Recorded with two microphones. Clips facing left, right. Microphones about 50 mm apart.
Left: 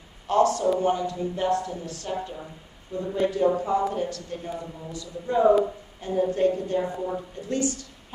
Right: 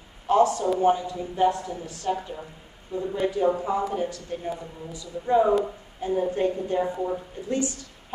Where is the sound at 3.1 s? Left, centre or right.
Centre.